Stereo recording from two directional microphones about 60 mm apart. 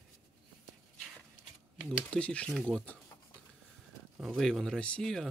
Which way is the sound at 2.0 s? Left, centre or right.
Centre.